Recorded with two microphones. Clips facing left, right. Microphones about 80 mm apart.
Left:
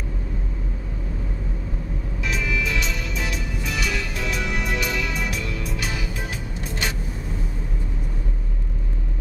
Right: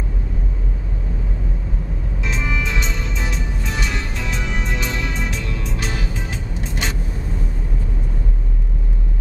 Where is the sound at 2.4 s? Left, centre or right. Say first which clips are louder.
Right 1 dB; right.